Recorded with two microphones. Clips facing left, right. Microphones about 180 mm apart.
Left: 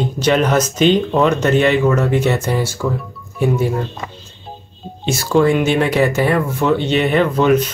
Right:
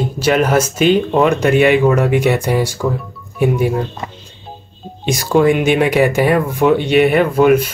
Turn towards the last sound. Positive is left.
turn(degrees=-10)  # may be behind; listen again after turning